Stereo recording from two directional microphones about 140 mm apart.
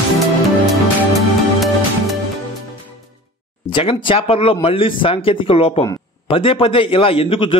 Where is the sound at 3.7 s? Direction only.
40° left (ahead or behind).